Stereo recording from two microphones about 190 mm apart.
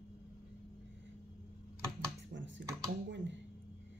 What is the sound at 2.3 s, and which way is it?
Computer keyboard, 75° right (ahead or behind).